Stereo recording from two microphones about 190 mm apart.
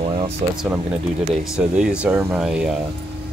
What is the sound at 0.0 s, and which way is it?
Music, 30° right (ahead or behind).